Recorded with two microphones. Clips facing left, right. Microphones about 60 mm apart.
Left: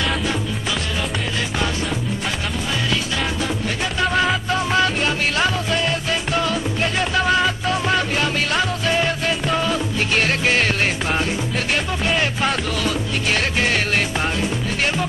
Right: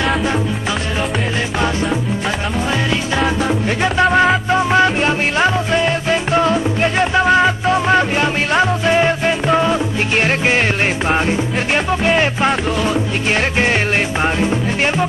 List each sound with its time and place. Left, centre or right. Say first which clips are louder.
3.2 s music: right 6 dB; right